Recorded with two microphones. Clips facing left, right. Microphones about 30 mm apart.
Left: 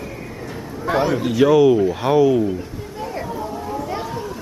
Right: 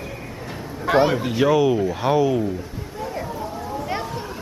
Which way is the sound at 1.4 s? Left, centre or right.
Centre.